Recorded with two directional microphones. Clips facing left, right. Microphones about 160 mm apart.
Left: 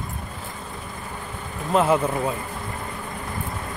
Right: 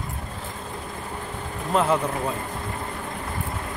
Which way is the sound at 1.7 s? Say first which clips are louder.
Left 3 dB; 5° left (ahead or behind).